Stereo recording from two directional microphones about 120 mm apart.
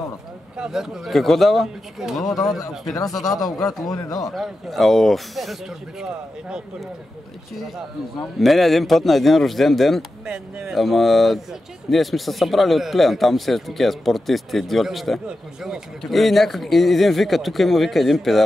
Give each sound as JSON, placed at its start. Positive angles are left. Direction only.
{"t": 0.6, "sound": "a man's voice", "side_deg": -5}
{"t": 3.0, "sound": "speech", "side_deg": 30}
{"t": 4.3, "sound": "a man's voice", "side_deg": 0}